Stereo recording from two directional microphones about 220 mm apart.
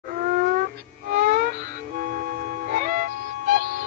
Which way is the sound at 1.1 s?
40° right (ahead or behind).